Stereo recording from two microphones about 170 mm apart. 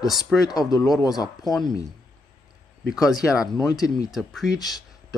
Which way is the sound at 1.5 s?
Centre (ahead or behind).